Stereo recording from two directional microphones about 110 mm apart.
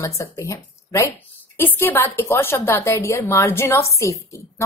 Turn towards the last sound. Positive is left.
turn(degrees=25)  # may be behind; listen again after turning